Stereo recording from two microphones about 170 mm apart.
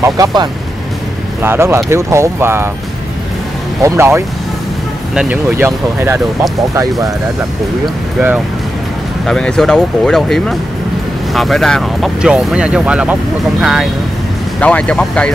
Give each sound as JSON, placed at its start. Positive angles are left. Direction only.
{"t": 0.0, "sound": "speech", "side_deg": -25}
{"t": 3.8, "sound": "speech", "side_deg": -15}
{"t": 9.2, "sound": "speech", "side_deg": 0}